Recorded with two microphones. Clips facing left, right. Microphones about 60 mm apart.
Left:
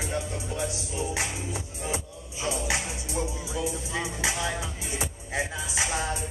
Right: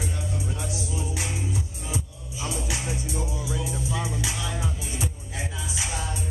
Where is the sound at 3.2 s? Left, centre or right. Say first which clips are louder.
Left 1 dB; centre.